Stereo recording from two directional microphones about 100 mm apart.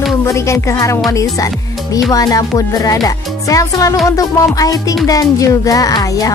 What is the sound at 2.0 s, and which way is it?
Speech, 35° left (ahead or behind).